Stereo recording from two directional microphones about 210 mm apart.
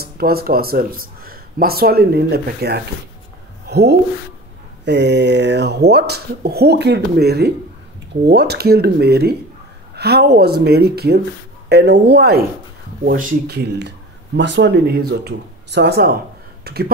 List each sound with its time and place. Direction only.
0.0 s speech: 45° right (ahead or behind)